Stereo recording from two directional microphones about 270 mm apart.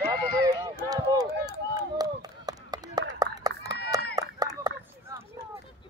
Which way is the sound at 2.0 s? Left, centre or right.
Centre.